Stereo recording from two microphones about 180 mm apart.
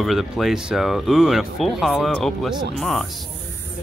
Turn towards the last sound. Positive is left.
turn(degrees=5)  # may be behind; listen again after turning